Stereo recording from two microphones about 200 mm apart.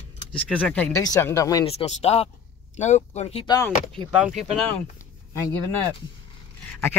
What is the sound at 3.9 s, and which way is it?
Speech, centre (ahead or behind).